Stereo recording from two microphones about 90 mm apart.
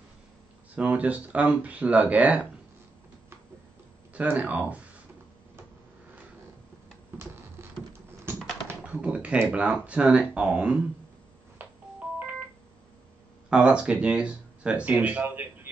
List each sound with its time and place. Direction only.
0.7 s speech: 15° right (ahead or behind)
4.1 s speech: 15° right (ahead or behind)
8.3 s computer keyboard: 30° right (ahead or behind)
8.6 s typing: 15° right (ahead or behind)
9.5 s speech: 15° right (ahead or behind)
11.6 s telephone: 25° right (ahead or behind)
12.2 s telephone dialing: 20° right (ahead or behind)
13.5 s speech: 10° right (ahead or behind)